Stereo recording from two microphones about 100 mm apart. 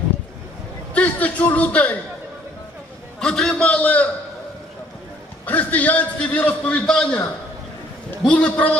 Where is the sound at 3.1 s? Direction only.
10° left (ahead or behind).